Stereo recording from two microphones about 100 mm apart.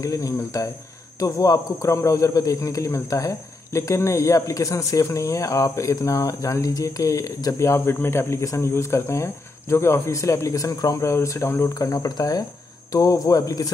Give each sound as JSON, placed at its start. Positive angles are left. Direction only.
{"t": 0.0, "sound": "a man's voice", "side_deg": 35}